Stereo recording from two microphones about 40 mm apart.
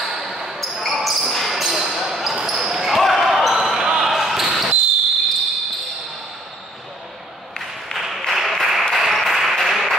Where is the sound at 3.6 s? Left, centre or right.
Centre.